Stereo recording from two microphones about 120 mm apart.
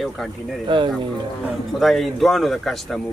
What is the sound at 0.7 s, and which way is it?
Speech, 40° right (ahead or behind).